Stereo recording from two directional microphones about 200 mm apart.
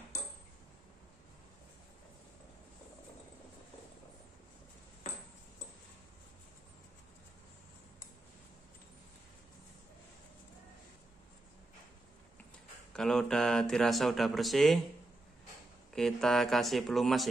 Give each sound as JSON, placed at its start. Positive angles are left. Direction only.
{"t": 0.1, "sound": "a sound", "side_deg": 15}
{"t": 12.9, "sound": "speech", "side_deg": 0}
{"t": 15.9, "sound": "speech", "side_deg": 0}